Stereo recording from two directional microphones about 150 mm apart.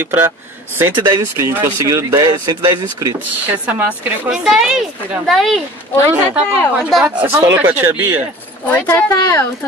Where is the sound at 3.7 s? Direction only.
10° right (ahead or behind).